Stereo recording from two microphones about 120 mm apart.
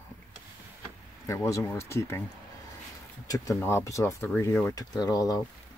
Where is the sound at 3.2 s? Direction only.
30° left (ahead or behind).